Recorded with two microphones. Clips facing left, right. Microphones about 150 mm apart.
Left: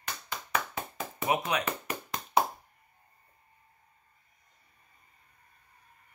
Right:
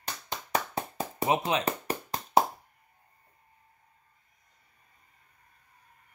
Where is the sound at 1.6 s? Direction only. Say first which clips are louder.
Right 4 dB; 35° right (ahead or behind).